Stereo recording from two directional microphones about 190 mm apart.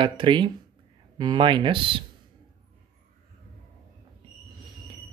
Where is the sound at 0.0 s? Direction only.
25° right (ahead or behind).